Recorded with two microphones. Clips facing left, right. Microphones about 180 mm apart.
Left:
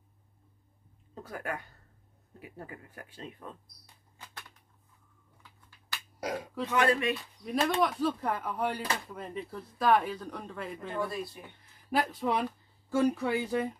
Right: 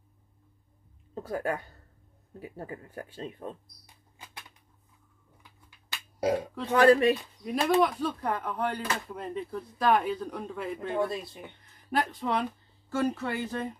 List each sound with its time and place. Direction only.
1.1 s speech: 30° right (ahead or behind)
4.2 s a sound: 15° right (ahead or behind)
5.9 s burping: 30° right (ahead or behind)
6.6 s speech: 35° right (ahead or behind)
7.4 s a man's voice: 5° right (ahead or behind)
11.9 s speech: 10° left (ahead or behind)